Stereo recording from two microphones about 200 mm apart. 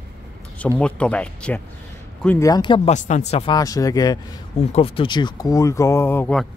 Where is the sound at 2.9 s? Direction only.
35° left (ahead or behind).